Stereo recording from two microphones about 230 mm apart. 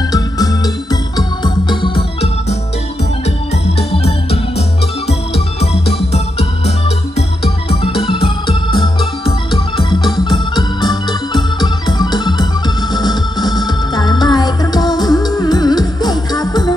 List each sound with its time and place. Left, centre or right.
0.1 s organ: centre
1.1 s music: centre
3.9 s organ: left
5.6 s music: left
7.2 s organ: left
13.7 s music: centre